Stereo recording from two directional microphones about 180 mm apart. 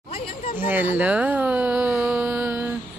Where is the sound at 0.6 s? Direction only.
10° right (ahead or behind).